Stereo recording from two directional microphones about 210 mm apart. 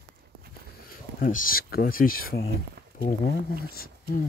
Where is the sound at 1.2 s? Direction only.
40° left (ahead or behind).